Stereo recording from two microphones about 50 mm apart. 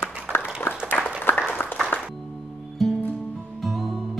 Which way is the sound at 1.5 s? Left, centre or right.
Left.